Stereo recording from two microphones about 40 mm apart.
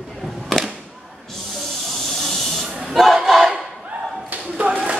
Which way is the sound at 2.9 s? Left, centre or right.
Centre.